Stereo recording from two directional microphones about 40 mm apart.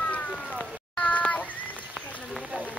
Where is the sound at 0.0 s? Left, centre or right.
Left.